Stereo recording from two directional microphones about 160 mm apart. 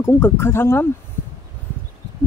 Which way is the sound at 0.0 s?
15° left (ahead or behind).